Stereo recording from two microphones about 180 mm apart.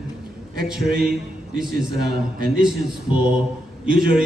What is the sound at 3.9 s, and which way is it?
Speech, 55° right (ahead or behind).